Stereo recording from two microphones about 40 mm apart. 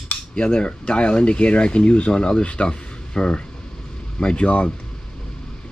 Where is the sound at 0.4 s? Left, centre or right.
Left.